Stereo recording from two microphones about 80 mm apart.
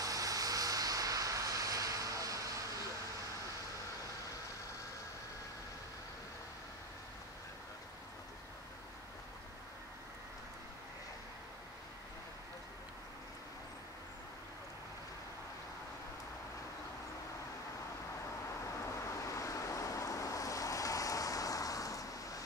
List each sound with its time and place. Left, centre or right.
0.0 s vehicle: right
18.7 s vehicle: left